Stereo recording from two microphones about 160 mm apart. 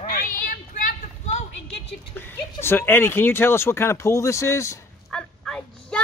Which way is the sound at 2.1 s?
15° left (ahead or behind).